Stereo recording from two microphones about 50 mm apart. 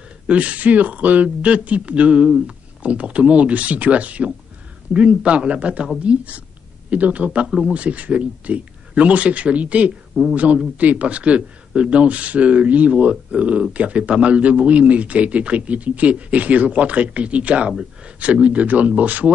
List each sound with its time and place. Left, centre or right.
0.3 s a woman's voice: right
7.4 s speech: centre
7.7 s a woman's voice: right